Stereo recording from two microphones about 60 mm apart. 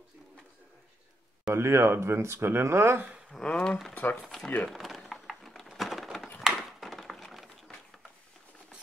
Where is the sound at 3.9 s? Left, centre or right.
Left.